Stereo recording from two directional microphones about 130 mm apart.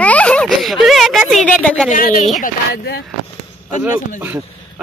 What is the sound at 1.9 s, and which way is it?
Speech, 85° left.